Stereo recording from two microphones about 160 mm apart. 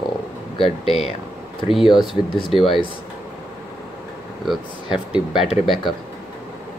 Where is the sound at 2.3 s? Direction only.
30° left (ahead or behind).